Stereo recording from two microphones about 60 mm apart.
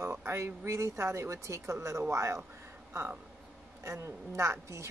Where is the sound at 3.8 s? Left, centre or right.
Right.